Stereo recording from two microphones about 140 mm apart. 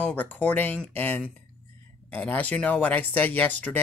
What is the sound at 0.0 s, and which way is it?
A man's voice, 10° left (ahead or behind).